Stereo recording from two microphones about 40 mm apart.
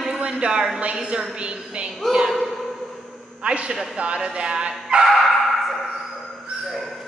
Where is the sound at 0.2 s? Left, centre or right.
Right.